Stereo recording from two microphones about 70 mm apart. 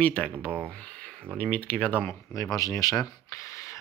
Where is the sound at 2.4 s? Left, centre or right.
Left.